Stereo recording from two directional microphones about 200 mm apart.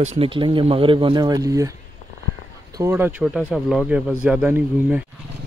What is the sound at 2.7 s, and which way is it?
Speech, 10° right (ahead or behind).